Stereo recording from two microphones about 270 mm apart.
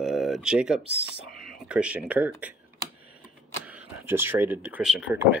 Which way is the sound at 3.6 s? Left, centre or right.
Centre.